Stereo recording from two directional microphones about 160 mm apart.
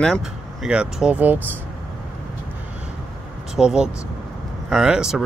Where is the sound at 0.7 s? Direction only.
5° right (ahead or behind).